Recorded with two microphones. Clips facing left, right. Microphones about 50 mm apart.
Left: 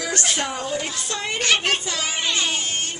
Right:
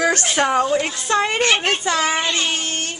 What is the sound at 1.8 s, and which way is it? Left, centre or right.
Speech, right.